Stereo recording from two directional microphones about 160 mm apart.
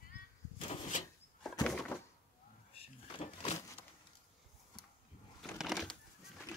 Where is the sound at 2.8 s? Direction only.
40° left (ahead or behind).